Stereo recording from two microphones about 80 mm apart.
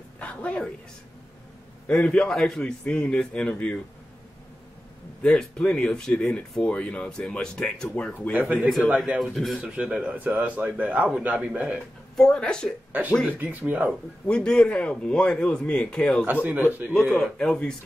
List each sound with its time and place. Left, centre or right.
0.2 s a sound: centre
1.9 s speech: centre
5.2 s speech: centre
8.3 s speech: centre
8.6 s a man's voice: centre
8.9 s a man's voice: centre
9.2 s a man's voice: centre
9.6 s a man's voice: centre
12.2 s speech: centre
13.3 s speech: right
14.2 s speech: centre
16.4 s speech: right
16.9 s speech: centre